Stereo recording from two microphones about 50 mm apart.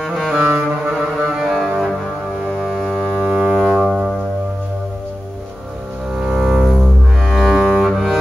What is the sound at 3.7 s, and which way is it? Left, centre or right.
Music, centre.